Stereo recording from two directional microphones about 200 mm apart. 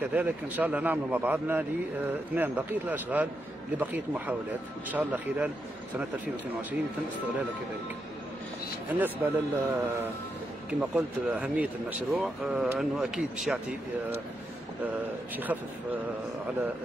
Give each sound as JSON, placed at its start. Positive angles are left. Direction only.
{"t": 0.1, "sound": "a man's voice", "side_deg": -10}
{"t": 8.8, "sound": "a man's voice", "side_deg": -10}
{"t": 15.3, "sound": "a man's voice", "side_deg": -10}